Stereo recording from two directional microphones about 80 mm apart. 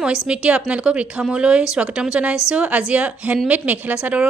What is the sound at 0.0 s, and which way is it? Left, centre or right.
A woman's voice, centre.